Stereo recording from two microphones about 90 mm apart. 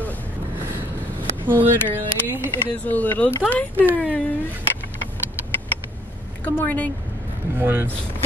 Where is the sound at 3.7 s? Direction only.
20° right (ahead or behind).